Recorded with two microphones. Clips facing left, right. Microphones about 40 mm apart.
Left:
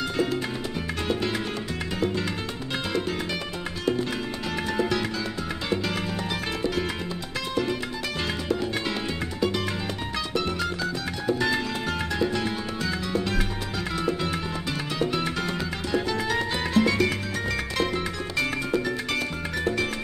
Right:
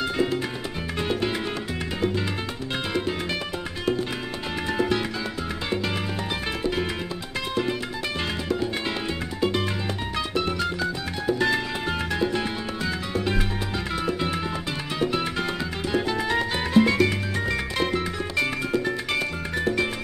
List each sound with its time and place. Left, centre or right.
4.6 s music: centre
11.3 s music: centre
19.1 s music: centre